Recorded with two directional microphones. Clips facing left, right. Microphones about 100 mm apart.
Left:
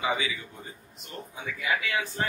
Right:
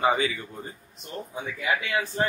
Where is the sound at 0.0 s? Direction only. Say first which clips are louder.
Right 6 dB; 45° right (ahead or behind).